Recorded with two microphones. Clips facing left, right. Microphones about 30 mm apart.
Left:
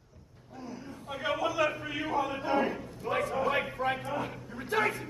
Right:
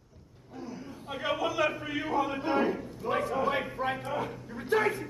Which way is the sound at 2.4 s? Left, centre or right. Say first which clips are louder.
Right 1 dB; right.